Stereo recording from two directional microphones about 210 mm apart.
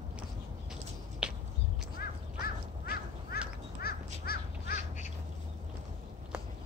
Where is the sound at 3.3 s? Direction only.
45° left (ahead or behind).